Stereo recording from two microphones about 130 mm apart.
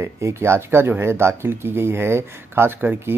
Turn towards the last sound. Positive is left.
turn(degrees=-15)  # may be behind; listen again after turning